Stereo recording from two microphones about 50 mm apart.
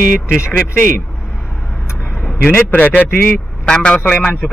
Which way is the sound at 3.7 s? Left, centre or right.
Centre.